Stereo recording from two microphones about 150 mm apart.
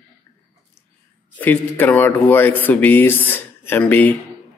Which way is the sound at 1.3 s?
10° left (ahead or behind).